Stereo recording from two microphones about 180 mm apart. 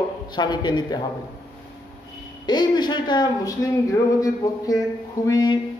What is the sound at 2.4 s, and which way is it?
A man's voice, 25° left (ahead or behind).